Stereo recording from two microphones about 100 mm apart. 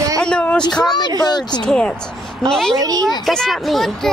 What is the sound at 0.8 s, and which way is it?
Speech, 45° left (ahead or behind).